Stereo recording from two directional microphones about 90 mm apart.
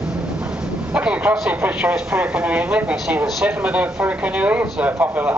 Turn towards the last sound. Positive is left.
turn(degrees=-20)  # may be behind; listen again after turning